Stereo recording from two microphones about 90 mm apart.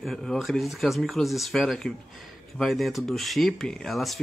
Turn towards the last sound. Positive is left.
turn(degrees=0)  # may be behind; listen again after turning